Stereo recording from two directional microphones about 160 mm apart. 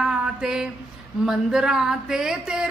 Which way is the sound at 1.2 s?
5° right (ahead or behind).